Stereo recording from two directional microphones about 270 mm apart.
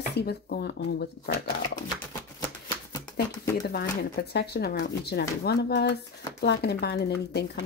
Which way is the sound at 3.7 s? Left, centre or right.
Left.